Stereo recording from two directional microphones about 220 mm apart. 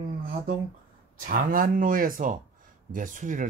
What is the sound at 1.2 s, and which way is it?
Speech, 40° right (ahead or behind).